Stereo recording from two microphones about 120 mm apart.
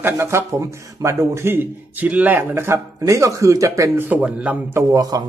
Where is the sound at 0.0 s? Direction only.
20° right (ahead or behind).